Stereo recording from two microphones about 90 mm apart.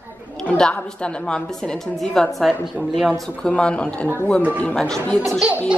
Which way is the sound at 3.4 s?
10° left (ahead or behind).